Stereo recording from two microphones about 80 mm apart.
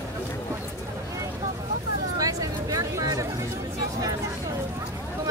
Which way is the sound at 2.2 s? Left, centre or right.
Right.